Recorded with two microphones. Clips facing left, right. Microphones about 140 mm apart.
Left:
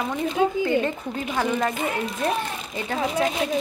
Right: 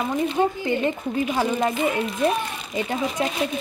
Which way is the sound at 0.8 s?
15° right (ahead or behind).